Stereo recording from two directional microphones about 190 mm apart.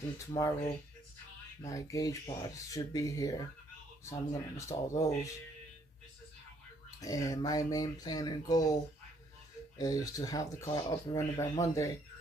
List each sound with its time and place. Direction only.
0.3 s speech: 20° left (ahead or behind)
1.6 s speech: 15° left (ahead or behind)
7.0 s speech: 20° left (ahead or behind)
9.8 s speech: 20° left (ahead or behind)